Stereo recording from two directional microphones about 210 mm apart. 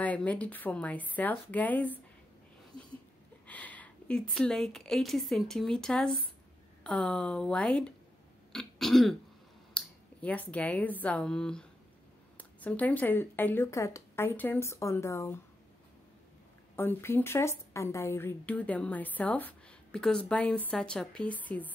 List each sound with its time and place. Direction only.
0.0 s a woman's voice: 5° left (ahead or behind)
2.7 s a sound: 20° left (ahead or behind)
3.4 s a woman's voice: 5° left (ahead or behind)
8.5 s throat clearing: centre (ahead or behind)
9.8 s a woman's voice: 5° left (ahead or behind)
16.7 s a woman's voice: 10° left (ahead or behind)